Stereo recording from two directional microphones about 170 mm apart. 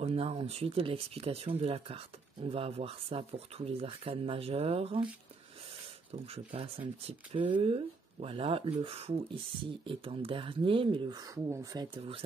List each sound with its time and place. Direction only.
0.0 s speech: 35° right (ahead or behind)
6.2 s speech: 35° right (ahead or behind)